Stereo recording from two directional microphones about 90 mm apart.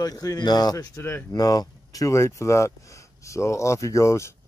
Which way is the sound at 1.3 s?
45° left (ahead or behind).